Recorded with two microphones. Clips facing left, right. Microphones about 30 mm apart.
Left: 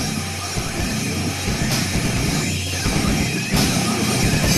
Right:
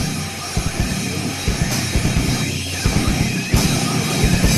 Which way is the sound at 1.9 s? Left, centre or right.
Centre.